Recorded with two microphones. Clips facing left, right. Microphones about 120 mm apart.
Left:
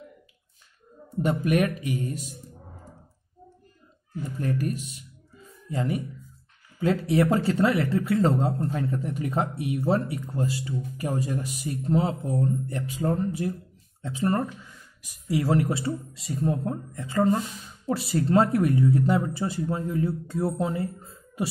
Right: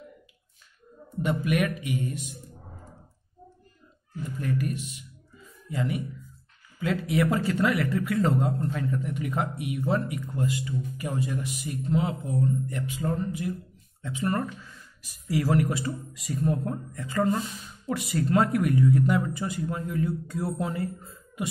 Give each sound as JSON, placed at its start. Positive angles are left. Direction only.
{"t": 1.2, "sound": "speech", "side_deg": 40}
{"t": 4.4, "sound": "speech", "side_deg": 35}
{"t": 14.4, "sound": "speech", "side_deg": 15}